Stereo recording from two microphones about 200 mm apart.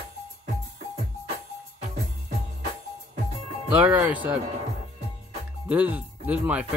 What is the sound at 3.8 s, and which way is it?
Speech, 5° right (ahead or behind).